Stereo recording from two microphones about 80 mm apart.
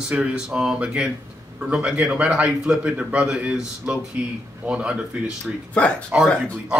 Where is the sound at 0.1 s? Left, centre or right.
Centre.